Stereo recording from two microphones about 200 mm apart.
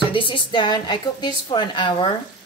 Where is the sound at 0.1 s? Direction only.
25° left (ahead or behind).